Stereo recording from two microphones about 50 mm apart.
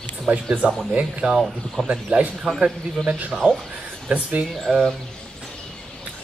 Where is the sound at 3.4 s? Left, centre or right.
Right.